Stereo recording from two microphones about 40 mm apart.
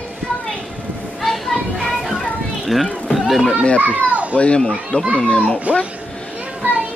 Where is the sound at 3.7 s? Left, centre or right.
Right.